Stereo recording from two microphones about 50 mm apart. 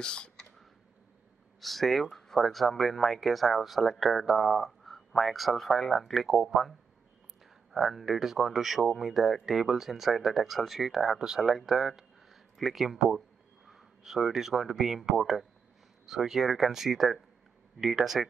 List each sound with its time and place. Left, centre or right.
0.0 s a sound: centre
1.6 s speech: centre
7.9 s speech: centre